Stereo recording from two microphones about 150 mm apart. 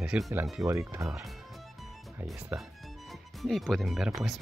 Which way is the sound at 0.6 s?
20° right (ahead or behind).